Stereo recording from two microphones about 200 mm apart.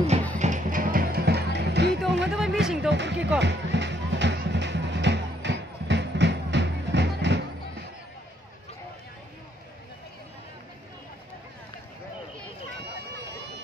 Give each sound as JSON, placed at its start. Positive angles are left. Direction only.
{"t": 0.4, "sound": "music", "side_deg": -40}
{"t": 2.6, "sound": "music", "side_deg": -5}
{"t": 2.9, "sound": "music", "side_deg": -60}